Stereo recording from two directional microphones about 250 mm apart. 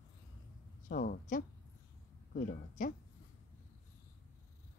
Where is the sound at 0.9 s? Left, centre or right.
Left.